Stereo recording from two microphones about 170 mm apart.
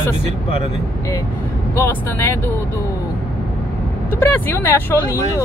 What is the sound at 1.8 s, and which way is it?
Speech, 15° left (ahead or behind).